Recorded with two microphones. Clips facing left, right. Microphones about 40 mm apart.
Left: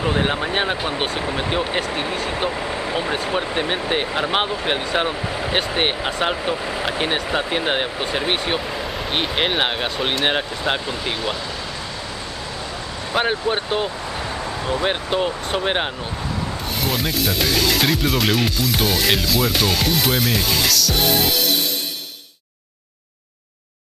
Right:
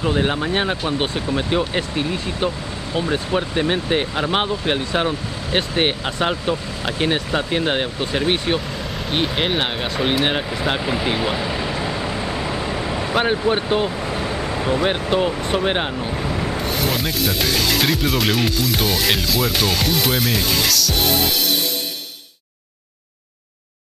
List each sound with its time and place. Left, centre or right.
0.0 s speech: centre
3.3 s speech: centre
10.9 s speech: centre
13.1 s speech: centre